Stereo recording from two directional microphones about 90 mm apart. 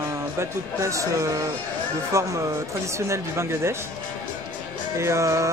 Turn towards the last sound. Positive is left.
turn(degrees=-35)  # may be behind; listen again after turning